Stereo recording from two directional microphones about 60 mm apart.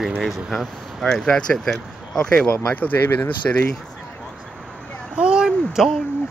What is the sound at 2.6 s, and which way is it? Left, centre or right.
Speech, left.